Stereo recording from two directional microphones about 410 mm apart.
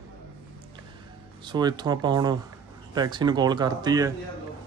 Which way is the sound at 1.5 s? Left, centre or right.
Centre.